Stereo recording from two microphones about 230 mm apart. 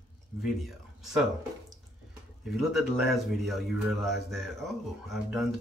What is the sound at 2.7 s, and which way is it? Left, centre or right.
Speech, centre.